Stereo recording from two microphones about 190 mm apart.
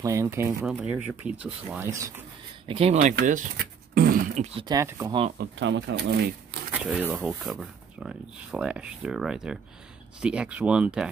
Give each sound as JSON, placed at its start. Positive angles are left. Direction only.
{"t": 0.0, "sound": "speech", "side_deg": -15}
{"t": 2.7, "sound": "speech", "side_deg": -35}
{"t": 3.3, "sound": "a sound", "side_deg": -45}
{"t": 4.6, "sound": "speech", "side_deg": -20}
{"t": 5.4, "sound": "speech", "side_deg": -65}
{"t": 6.7, "sound": "speech", "side_deg": -5}